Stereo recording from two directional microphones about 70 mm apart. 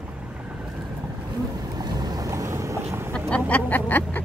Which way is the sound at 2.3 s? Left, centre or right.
Right.